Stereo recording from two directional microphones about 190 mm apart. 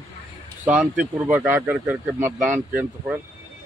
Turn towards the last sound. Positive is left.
turn(degrees=-10)  # may be behind; listen again after turning